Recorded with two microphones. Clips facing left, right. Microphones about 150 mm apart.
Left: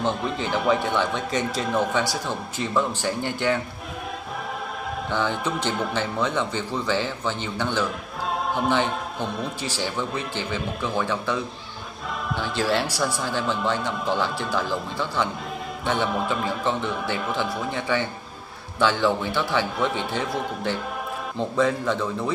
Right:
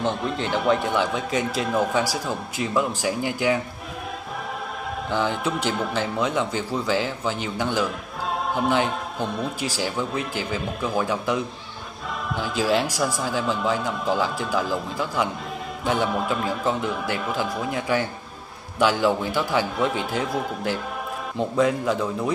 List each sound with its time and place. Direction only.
0.0 s a man's voice: centre (ahead or behind)
5.1 s a man's voice: 5° right (ahead or behind)
12.4 s a man's voice: 5° right (ahead or behind)